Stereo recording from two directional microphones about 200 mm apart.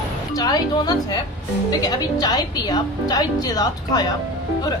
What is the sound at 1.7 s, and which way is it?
A woman's voice, 20° left (ahead or behind).